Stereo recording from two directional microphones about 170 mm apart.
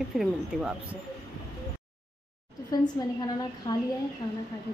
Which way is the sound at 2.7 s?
20° left (ahead or behind).